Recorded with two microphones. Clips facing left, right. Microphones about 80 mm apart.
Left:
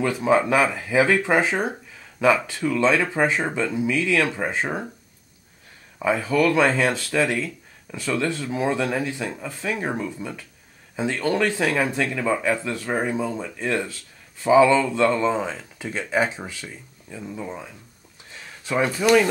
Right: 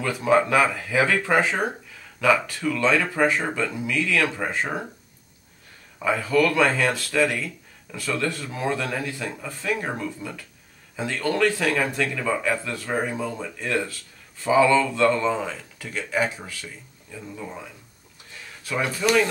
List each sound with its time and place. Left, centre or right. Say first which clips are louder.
0.0 s speech: left 1 dB; centre
5.9 s speech: even; centre
18.6 s a sound: left 4 dB; left